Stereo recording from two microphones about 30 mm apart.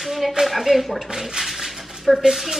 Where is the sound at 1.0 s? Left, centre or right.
Centre.